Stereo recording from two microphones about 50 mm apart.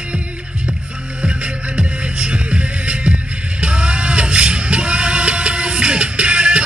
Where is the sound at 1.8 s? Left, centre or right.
Right.